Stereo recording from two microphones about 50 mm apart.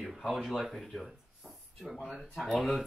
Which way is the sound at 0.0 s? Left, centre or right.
Centre.